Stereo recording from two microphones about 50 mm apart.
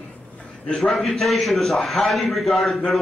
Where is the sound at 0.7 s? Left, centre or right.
Centre.